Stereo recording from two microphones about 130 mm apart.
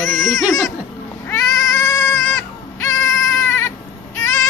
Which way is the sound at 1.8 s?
20° left (ahead or behind).